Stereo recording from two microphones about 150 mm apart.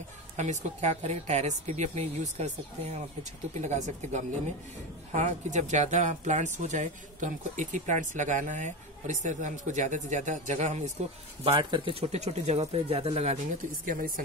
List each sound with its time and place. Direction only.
0.4 s speech: 50° right (ahead or behind)
11.4 s speech: 35° right (ahead or behind)
13.8 s speech: 70° right (ahead or behind)